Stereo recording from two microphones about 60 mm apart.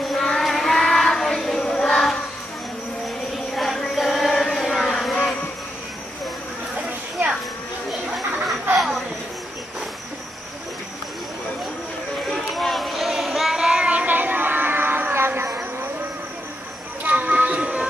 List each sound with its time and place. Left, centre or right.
0.0 s child singing: centre
3.5 s a sound: centre
8.7 s insect: centre
12.3 s child singing: centre
13.8 s music: right
17.0 s music: right